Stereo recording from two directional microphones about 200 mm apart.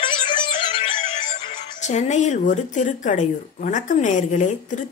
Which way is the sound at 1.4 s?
35° left (ahead or behind).